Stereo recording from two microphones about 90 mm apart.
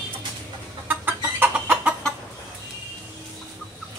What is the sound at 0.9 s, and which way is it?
Chicken, 25° right (ahead or behind).